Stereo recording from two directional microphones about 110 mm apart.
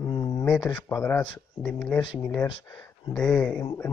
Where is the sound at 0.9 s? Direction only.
20° left (ahead or behind).